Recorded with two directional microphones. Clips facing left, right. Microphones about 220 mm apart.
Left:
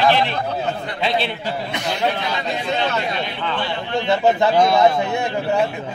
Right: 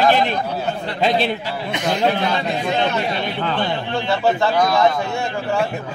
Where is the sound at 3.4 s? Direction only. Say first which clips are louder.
Right 3 dB; 45° right (ahead or behind).